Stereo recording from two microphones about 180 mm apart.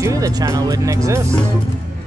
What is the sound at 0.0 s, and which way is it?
Speech, 20° right (ahead or behind).